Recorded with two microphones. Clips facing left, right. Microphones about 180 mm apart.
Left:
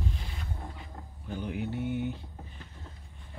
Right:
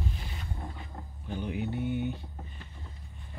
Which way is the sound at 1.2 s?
5° left (ahead or behind).